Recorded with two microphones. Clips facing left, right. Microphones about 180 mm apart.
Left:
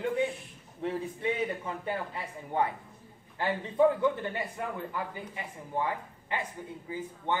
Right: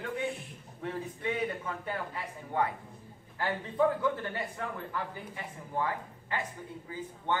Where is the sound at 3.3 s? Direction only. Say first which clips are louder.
Left 3 dB; 20° left (ahead or behind).